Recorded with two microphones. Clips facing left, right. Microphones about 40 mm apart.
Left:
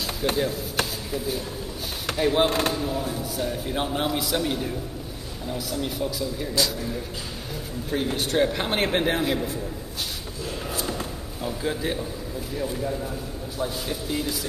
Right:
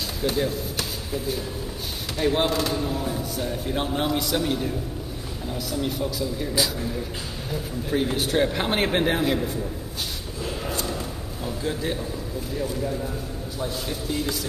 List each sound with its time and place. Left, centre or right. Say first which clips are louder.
2.1 s speech: left 1 dB; centre
2.4 s speech: left 1 dB; left
2.7 s a man's voice: right 1 dB; centre
7.9 s a man's voice: right 1 dB; centre
10.7 s a sound: even; centre
11.4 s a man's voice: left 1 dB; centre
13.6 s a man's voice: left 1 dB; centre